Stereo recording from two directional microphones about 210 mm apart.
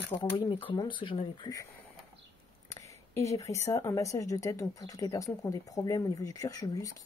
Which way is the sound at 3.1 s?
15° left (ahead or behind).